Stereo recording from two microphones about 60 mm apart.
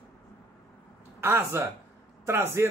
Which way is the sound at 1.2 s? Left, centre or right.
Right.